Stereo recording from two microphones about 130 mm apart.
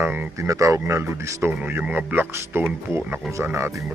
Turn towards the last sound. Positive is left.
turn(degrees=-20)  # may be behind; listen again after turning